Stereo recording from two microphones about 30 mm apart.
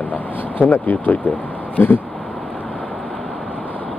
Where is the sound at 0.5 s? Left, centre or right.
Left.